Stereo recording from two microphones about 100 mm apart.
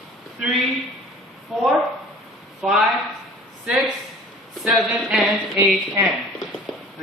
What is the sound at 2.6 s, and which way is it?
Speech, 5° right (ahead or behind).